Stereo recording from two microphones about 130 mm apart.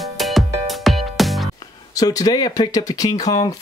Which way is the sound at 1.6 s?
30° left (ahead or behind).